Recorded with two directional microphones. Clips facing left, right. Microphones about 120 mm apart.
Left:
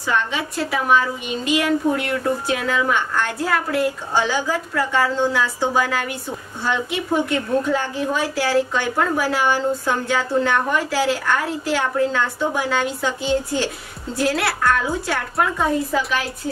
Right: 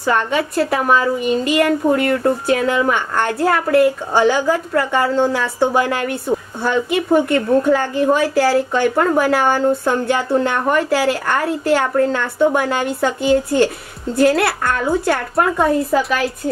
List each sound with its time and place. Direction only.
0.0 s a woman's voice: 50° right (ahead or behind)